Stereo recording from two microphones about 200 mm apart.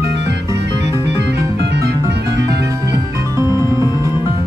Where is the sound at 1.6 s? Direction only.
55° right (ahead or behind).